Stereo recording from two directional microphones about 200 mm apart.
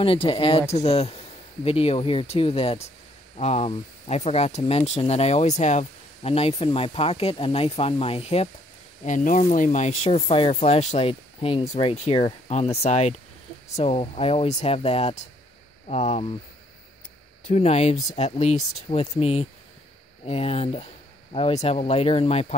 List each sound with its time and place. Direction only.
0.0 s speech: 25° left (ahead or behind)
17.5 s speech: 30° left (ahead or behind)